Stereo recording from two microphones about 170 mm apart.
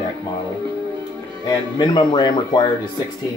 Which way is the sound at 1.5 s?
25° left (ahead or behind).